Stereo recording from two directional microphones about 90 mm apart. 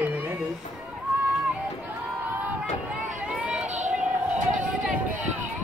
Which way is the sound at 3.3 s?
10° right (ahead or behind).